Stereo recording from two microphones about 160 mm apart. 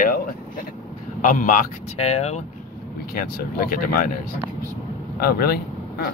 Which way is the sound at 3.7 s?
65° left (ahead or behind).